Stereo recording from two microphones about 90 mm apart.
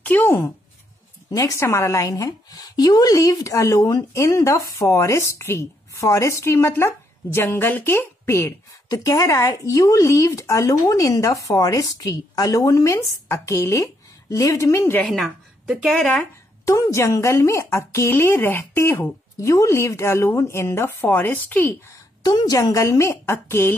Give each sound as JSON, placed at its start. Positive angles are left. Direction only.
{"t": 0.0, "sound": "a sound", "side_deg": 20}
{"t": 1.3, "sound": "a woman's voice", "side_deg": 40}
{"t": 15.0, "sound": "speech", "side_deg": 5}
{"t": 16.6, "sound": "a woman's voice", "side_deg": 35}
{"t": 22.2, "sound": "a woman's voice", "side_deg": 45}